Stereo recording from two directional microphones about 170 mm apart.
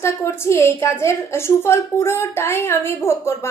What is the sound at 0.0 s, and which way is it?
A woman's voice, 15° left (ahead or behind).